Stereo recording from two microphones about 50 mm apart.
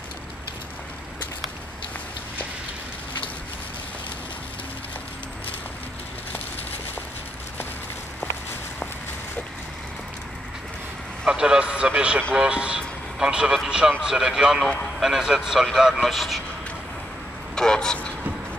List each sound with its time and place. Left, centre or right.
11.2 s speech: centre
12.7 s vehicle: centre
13.7 s speech: centre
17.6 s vehicle: centre